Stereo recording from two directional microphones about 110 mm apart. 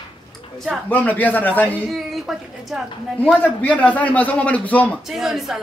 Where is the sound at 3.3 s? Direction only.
15° left (ahead or behind).